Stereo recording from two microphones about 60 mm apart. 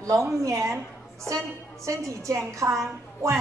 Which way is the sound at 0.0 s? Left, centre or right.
Right.